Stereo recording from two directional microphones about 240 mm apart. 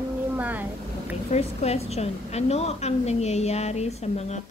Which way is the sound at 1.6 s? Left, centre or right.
Left.